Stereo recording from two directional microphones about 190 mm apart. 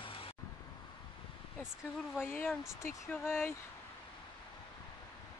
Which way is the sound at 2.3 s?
10° left (ahead or behind).